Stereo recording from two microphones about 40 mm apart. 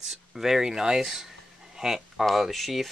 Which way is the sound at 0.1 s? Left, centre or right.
Centre.